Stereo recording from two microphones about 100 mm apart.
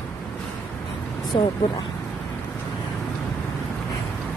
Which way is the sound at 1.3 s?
55° left (ahead or behind).